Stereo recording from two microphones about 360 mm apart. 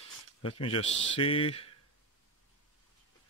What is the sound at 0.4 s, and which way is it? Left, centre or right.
Speech, centre.